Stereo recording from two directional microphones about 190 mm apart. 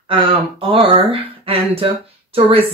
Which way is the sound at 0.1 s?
30° right (ahead or behind).